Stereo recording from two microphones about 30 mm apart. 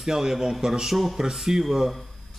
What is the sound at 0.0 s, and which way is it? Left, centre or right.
A man's voice, centre.